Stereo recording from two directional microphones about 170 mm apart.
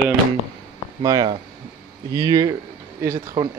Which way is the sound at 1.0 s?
25° right (ahead or behind).